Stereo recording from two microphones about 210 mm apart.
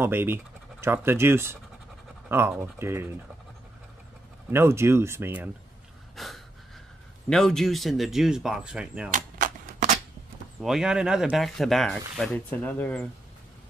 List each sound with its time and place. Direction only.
0.0 s speech: 10° right (ahead or behind)
4.5 s speech: 10° right (ahead or behind)
6.1 s a sound: centre (ahead or behind)
7.2 s speech: centre (ahead or behind)
9.1 s typewriter: 40° right (ahead or behind)
10.6 s speech: centre (ahead or behind)